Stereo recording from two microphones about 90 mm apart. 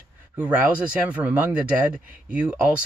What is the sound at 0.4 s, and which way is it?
Speech, 15° right (ahead or behind).